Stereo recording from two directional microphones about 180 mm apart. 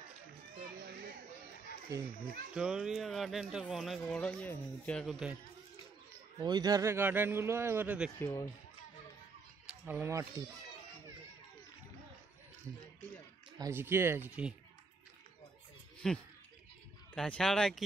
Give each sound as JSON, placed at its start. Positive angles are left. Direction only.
{"t": 0.6, "sound": "children playing", "side_deg": -55}
{"t": 1.9, "sound": "a child's voice", "side_deg": -20}
{"t": 2.5, "sound": "speech", "side_deg": -5}
{"t": 6.4, "sound": "a man's voice", "side_deg": -20}
{"t": 8.2, "sound": "speech", "side_deg": 20}
{"t": 9.7, "sound": "speech", "side_deg": -10}
{"t": 13.6, "sound": "a man's voice", "side_deg": -15}
{"t": 16.0, "sound": "speech", "side_deg": 5}